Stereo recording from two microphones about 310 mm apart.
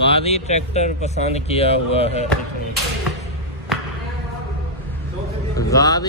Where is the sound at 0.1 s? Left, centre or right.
Centre.